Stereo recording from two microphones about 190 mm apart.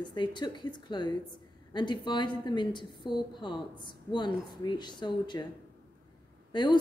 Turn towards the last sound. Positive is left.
turn(degrees=25)  # may be behind; listen again after turning